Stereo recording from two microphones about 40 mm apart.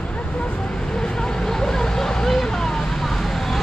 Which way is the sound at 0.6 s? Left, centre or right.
Centre.